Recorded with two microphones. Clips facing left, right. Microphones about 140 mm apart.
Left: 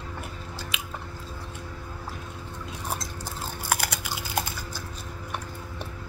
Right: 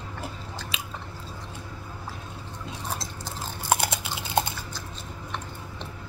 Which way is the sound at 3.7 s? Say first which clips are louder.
Right 5 dB; 25° right (ahead or behind).